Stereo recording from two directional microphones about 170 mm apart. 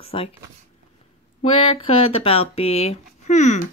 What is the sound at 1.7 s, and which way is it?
Speech, 35° left (ahead or behind).